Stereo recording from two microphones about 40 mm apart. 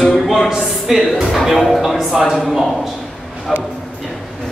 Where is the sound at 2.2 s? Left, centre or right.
Centre.